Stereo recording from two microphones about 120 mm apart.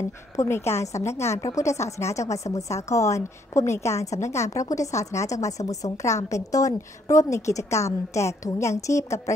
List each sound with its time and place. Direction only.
0.4 s a woman's voice: 20° left (ahead or behind)